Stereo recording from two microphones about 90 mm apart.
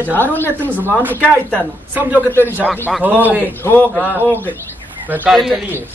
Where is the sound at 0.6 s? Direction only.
20° right (ahead or behind).